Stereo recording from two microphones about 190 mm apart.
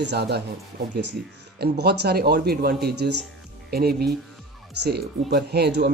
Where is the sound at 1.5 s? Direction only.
60° right (ahead or behind).